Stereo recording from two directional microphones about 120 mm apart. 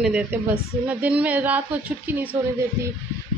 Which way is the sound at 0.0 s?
10° right (ahead or behind).